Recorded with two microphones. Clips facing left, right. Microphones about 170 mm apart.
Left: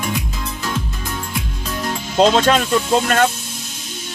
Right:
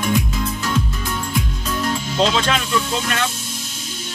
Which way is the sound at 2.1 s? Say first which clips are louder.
Left 7 dB; 45° left (ahead or behind).